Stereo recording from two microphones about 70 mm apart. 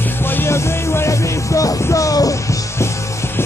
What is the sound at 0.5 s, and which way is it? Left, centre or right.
Music, left.